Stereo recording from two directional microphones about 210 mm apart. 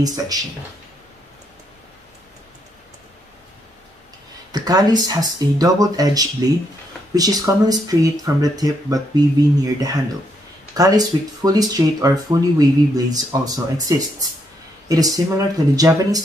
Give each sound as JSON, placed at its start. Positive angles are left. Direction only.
{"t": 0.0, "sound": "speech", "side_deg": -15}
{"t": 4.5, "sound": "speech", "side_deg": -20}